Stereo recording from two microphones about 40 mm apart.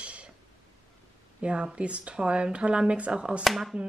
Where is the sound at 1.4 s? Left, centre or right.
Right.